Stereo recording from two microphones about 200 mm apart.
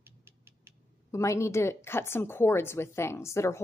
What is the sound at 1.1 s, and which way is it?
Speech, 15° left (ahead or behind).